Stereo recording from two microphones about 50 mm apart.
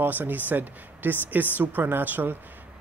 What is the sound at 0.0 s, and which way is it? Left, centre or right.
Speech, right.